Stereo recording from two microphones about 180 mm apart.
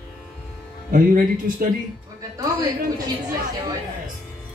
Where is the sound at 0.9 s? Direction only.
50° right (ahead or behind).